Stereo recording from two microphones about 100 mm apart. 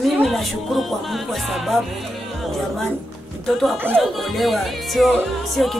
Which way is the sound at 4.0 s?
Centre (ahead or behind).